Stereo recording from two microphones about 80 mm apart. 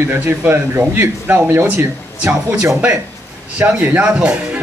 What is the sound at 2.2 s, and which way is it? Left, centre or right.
Speech, centre.